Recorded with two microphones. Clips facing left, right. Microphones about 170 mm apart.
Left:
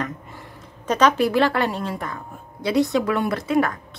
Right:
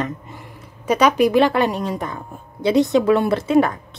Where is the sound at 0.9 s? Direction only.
10° right (ahead or behind).